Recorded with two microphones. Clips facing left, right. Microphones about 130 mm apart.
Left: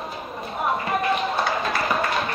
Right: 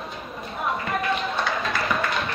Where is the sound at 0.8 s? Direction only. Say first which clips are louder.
Left 2 dB; 30° left (ahead or behind).